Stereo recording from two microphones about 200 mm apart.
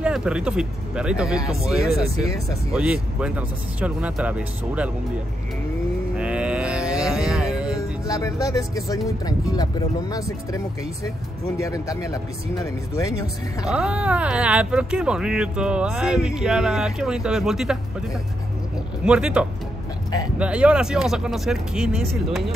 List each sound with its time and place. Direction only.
0.0 s speech: 5° right (ahead or behind)
6.1 s livestock: 5° right (ahead or behind)
8.1 s speech: 15° left (ahead or behind)
13.7 s speech: 5° right (ahead or behind)
19.0 s speech: 5° right (ahead or behind)